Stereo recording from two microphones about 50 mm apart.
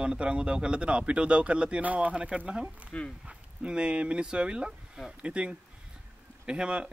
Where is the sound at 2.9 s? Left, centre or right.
Left.